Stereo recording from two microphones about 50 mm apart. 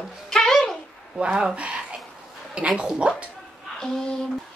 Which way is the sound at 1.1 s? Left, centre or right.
Centre.